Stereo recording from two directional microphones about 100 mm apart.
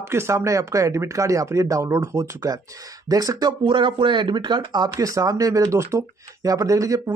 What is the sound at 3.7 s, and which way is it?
Speech, 55° right (ahead or behind).